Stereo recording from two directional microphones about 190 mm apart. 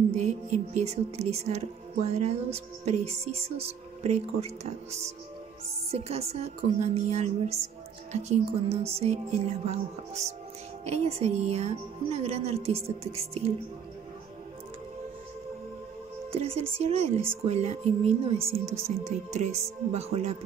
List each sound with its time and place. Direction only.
0.1 s a woman's voice: 35° right (ahead or behind)
16.3 s a woman's voice: 30° right (ahead or behind)